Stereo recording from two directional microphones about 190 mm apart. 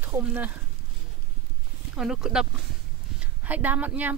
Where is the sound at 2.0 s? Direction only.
5° right (ahead or behind).